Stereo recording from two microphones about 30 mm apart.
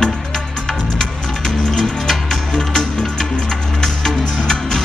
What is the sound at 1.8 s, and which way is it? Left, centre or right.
Music, centre.